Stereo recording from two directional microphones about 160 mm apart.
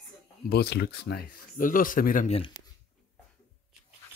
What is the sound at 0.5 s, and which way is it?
Speech, 85° left.